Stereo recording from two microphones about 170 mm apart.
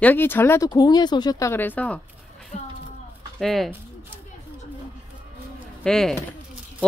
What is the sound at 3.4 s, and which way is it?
Speech, centre (ahead or behind).